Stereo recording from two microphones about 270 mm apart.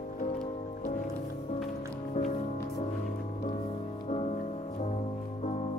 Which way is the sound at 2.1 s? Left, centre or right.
Left.